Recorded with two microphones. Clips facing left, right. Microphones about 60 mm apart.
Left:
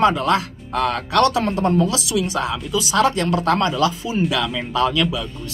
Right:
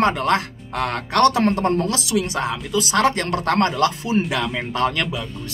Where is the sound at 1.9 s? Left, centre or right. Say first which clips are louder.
Even; right.